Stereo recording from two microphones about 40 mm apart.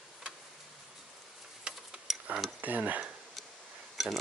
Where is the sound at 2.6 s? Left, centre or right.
Right.